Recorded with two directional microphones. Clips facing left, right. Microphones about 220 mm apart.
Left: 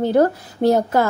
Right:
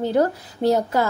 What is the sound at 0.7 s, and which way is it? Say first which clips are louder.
Speech: left 2 dB; 50° left (ahead or behind).